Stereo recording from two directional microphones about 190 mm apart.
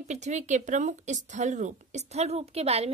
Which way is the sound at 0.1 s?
35° right (ahead or behind).